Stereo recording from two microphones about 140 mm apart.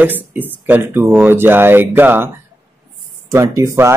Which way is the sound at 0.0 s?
15° right (ahead or behind).